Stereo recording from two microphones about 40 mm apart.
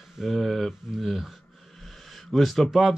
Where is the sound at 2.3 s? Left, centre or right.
Centre.